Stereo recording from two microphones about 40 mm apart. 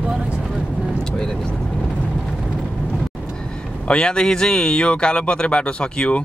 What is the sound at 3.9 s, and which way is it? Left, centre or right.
Speech, left.